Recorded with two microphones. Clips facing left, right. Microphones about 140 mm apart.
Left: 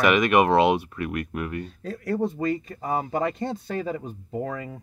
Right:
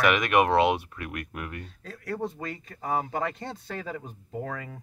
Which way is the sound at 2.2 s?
25° left (ahead or behind).